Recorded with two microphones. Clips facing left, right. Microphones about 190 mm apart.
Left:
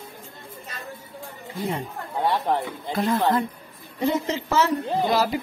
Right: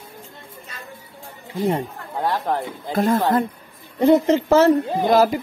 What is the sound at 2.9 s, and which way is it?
Speech, 45° right (ahead or behind).